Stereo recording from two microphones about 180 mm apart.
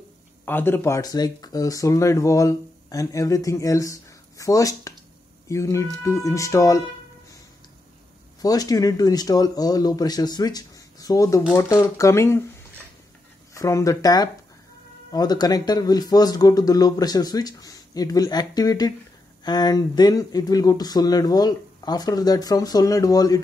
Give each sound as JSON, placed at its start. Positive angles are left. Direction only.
{"t": 0.5, "sound": "speech", "side_deg": 10}
{"t": 8.4, "sound": "speech", "side_deg": 20}
{"t": 13.5, "sound": "speech", "side_deg": 15}